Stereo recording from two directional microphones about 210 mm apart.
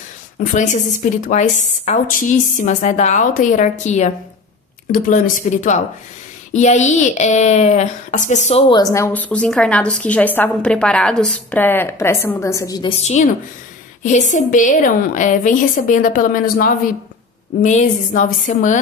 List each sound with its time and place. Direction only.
0.4 s a woman's voice: 35° left (ahead or behind)
8.9 s a woman's voice: 10° left (ahead or behind); by 18.8 s 35° left (ahead or behind)